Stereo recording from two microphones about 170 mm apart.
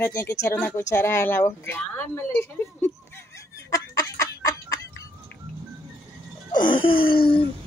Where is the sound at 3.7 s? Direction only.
20° left (ahead or behind).